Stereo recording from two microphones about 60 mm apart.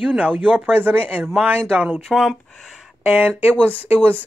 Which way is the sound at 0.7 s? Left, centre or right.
Right.